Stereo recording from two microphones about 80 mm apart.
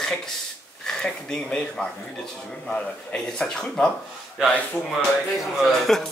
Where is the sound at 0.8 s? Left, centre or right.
Centre.